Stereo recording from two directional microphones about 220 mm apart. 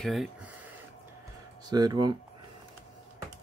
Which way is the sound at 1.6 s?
20° right (ahead or behind).